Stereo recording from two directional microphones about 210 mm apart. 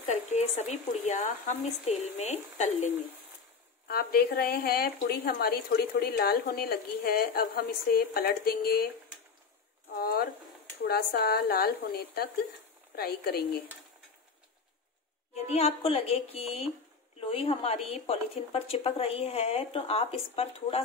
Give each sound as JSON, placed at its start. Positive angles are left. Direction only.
{"t": 0.0, "sound": "speech", "side_deg": 35}
{"t": 3.8, "sound": "a woman's voice", "side_deg": 45}
{"t": 9.9, "sound": "a sound", "side_deg": 45}
{"t": 10.8, "sound": "a woman's voice", "side_deg": 50}
{"t": 15.3, "sound": "speech", "side_deg": 30}